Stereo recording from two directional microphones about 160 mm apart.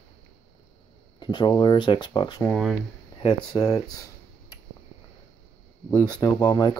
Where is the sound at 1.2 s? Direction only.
25° left (ahead or behind).